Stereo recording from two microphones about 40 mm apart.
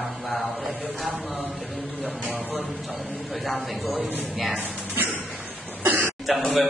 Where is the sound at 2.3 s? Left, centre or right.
Right.